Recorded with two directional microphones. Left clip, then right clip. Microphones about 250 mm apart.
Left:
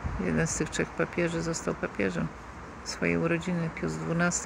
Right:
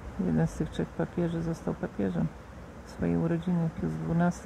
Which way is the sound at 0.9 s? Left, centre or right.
Centre.